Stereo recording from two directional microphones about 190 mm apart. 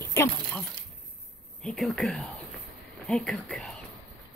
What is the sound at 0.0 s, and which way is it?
Speech, 15° left (ahead or behind).